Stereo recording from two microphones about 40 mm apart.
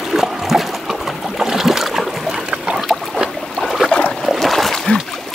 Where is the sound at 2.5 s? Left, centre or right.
Right.